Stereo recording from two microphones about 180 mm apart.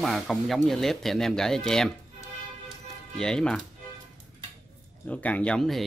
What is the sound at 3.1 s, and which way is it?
Speech, 5° left (ahead or behind).